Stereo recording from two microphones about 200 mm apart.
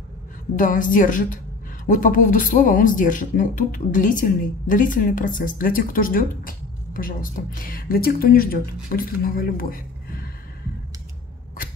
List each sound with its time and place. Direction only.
0.6 s a woman's voice: 40° left (ahead or behind)